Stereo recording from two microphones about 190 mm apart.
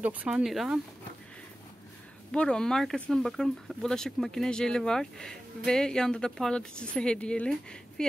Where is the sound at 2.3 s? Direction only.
5° left (ahead or behind).